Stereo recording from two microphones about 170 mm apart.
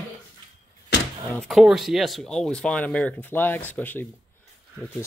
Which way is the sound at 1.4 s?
Centre (ahead or behind).